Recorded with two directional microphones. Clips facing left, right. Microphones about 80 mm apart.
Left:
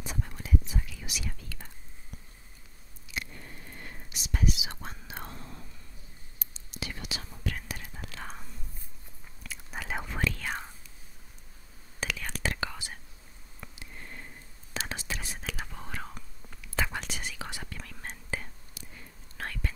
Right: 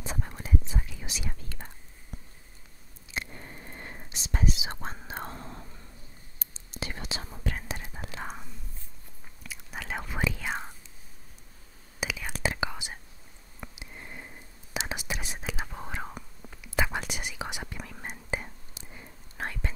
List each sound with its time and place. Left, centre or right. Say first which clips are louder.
0.0 s whispering: right 2 dB; right
3.1 s whispering: right 2 dB; right
9.4 s whispering: even; centre
10.1 s whispering: right 3 dB; centre
12.0 s whispering: right 2 dB; centre